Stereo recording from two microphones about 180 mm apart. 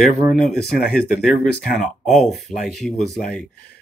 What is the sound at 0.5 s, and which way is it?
Speech, 60° left (ahead or behind).